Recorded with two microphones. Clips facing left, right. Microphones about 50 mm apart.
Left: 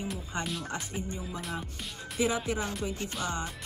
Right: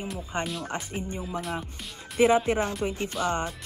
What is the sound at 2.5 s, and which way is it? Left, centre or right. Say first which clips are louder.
Speech: right 6 dB; right.